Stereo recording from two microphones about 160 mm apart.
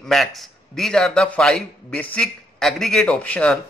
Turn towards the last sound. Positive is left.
turn(degrees=5)  # may be behind; listen again after turning